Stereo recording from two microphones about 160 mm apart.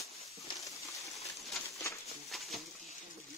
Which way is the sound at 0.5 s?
20° left (ahead or behind).